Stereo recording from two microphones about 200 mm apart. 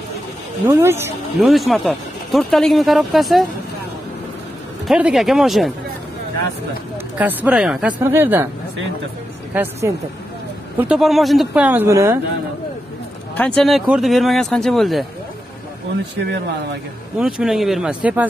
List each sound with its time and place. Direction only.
0.7 s speech: 10° right (ahead or behind)
1.5 s speech: centre (ahead or behind)
4.8 s speech: 5° right (ahead or behind)
7.2 s speech: 5° right (ahead or behind)
9.5 s speech: 10° right (ahead or behind)
13.6 s speech: centre (ahead or behind)
16.2 s speech: 60° right (ahead or behind)
17.2 s speech: 5° right (ahead or behind)